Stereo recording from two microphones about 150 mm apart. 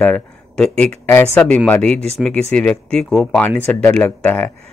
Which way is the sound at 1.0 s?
15° left (ahead or behind).